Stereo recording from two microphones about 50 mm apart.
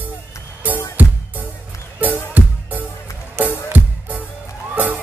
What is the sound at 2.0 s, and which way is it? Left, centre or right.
Music, right.